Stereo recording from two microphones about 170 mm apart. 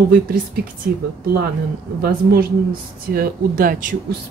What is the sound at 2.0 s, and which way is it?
Speech, 65° right (ahead or behind).